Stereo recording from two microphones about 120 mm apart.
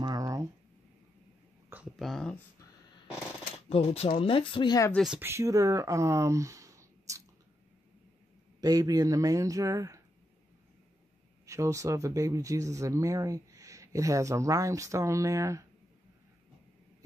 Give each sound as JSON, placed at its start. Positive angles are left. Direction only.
{"t": 0.0, "sound": "a sound", "side_deg": -30}
{"t": 2.0, "sound": "speech", "side_deg": 5}
{"t": 3.6, "sound": "speech", "side_deg": 55}
{"t": 5.2, "sound": "speech", "side_deg": -25}
{"t": 8.5, "sound": "speech", "side_deg": -30}
{"t": 11.4, "sound": "speech", "side_deg": -25}